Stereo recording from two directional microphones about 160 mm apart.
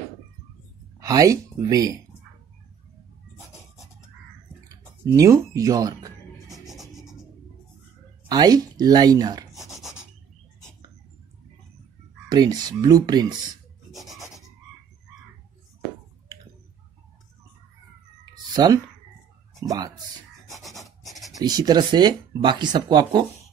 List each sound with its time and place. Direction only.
0.9 s speech: 20° right (ahead or behind)
4.6 s speech: 20° right (ahead or behind)
6.5 s music: centre (ahead or behind)
8.3 s speech: 25° right (ahead or behind)
9.5 s a sound: centre (ahead or behind)
12.3 s speech: 25° right (ahead or behind)
13.9 s rub: centre (ahead or behind)
18.3 s cat: 25° right (ahead or behind)
19.6 s speech: 20° right (ahead or behind)
20.5 s rub: centre (ahead or behind)
21.0 s writing: centre (ahead or behind)
21.4 s speech: 25° right (ahead or behind)